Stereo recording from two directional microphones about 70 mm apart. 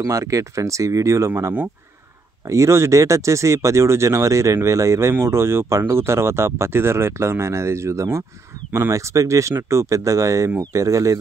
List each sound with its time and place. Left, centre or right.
0.0 s speech: right